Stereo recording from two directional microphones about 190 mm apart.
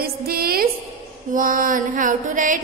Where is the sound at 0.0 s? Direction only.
55° right (ahead or behind).